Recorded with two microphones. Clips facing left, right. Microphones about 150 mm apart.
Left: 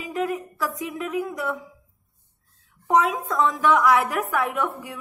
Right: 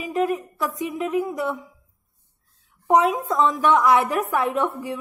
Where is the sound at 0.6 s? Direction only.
25° right (ahead or behind).